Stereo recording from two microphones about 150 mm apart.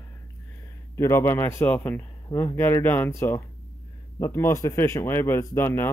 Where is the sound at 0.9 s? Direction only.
20° left (ahead or behind).